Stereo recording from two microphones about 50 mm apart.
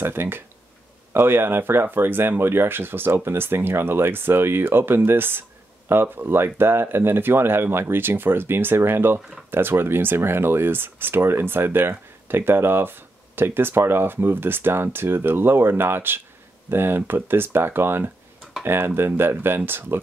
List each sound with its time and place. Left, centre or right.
0.0 s speech: right